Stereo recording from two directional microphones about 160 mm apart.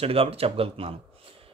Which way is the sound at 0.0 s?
35° right (ahead or behind).